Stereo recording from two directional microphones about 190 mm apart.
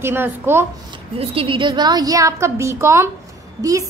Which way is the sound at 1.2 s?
30° right (ahead or behind).